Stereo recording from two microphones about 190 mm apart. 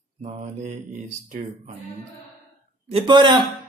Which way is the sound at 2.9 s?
25° right (ahead or behind).